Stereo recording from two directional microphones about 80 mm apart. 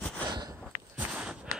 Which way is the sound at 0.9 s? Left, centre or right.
Centre.